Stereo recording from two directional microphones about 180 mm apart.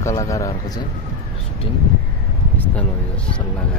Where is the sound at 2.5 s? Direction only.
5° left (ahead or behind).